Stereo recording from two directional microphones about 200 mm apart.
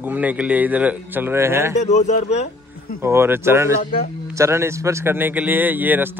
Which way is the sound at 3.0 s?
15° right (ahead or behind).